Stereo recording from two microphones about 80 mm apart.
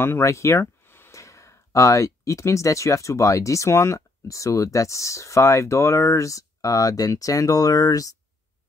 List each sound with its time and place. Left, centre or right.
0.0 s speech: left